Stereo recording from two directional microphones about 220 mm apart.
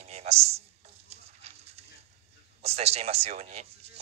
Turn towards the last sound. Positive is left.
turn(degrees=-30)  # may be behind; listen again after turning